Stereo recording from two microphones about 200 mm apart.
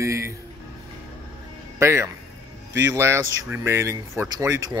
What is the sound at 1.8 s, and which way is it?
Speech, 15° right (ahead or behind).